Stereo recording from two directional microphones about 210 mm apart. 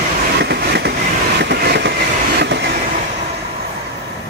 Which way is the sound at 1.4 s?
50° right (ahead or behind).